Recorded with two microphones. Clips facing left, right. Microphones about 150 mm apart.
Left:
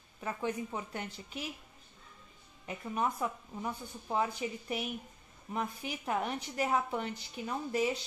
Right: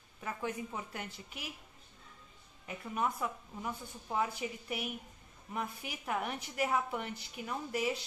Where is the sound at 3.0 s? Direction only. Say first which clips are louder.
Left 1 dB; 20° left (ahead or behind).